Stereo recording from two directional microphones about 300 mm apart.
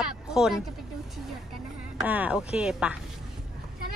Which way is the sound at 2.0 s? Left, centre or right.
Centre.